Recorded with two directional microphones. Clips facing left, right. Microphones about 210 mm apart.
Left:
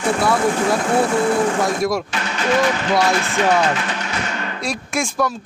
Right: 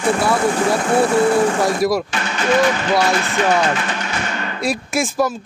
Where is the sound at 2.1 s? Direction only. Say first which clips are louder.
Right 1 dB; 50° right (ahead or behind).